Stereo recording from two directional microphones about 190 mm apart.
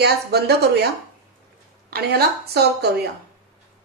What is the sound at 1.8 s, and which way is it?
Speech, 55° right (ahead or behind).